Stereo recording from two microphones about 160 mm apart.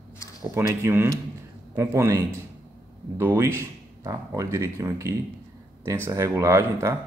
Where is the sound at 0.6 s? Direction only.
15° right (ahead or behind).